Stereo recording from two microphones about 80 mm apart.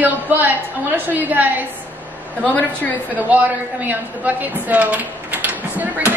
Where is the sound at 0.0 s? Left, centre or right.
Right.